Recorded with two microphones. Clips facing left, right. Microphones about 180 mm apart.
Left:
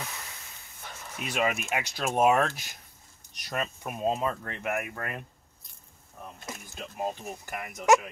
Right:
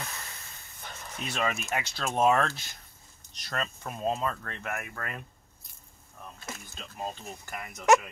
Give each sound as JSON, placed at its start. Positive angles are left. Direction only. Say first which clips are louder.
{"t": 0.0, "sound": "hiss", "louder": "left 1 dB", "side_deg": 10}
{"t": 0.8, "sound": "bow-wow", "louder": "left 1 dB", "side_deg": 10}
{"t": 1.7, "sound": "speech", "louder": "left 2 dB", "side_deg": 15}
{"t": 6.8, "sound": "speech", "louder": "left 5 dB", "side_deg": 15}